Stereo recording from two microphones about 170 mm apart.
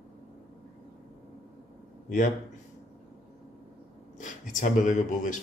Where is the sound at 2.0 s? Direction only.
50° left (ahead or behind).